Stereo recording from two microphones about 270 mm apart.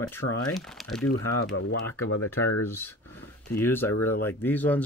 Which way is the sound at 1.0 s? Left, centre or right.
Left.